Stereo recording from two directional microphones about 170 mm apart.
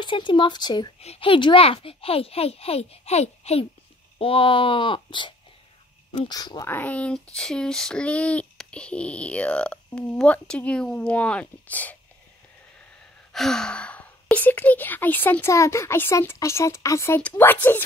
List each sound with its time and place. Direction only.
0.0 s a child's voice: 30° left (ahead or behind)
6.7 s speech: 10° left (ahead or behind)
13.3 s speech: 5° left (ahead or behind)